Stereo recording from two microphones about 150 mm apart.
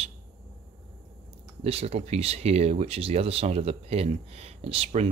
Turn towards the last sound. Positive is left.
turn(degrees=-45)  # may be behind; listen again after turning